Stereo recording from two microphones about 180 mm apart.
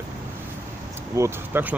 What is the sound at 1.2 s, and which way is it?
Speech, 10° right (ahead or behind).